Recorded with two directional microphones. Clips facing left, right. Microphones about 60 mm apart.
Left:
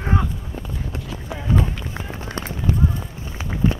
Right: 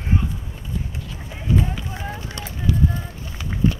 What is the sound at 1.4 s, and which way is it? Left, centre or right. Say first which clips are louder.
Run: even; left.